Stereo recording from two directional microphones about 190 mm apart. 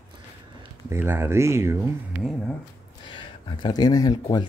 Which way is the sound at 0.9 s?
10° right (ahead or behind).